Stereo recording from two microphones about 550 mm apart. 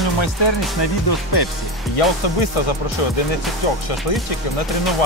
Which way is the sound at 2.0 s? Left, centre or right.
Left.